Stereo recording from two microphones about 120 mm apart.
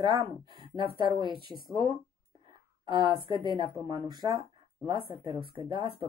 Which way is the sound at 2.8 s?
40° right (ahead or behind).